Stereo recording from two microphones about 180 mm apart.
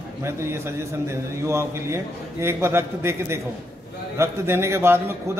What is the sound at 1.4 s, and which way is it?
A man's voice, 15° right (ahead or behind).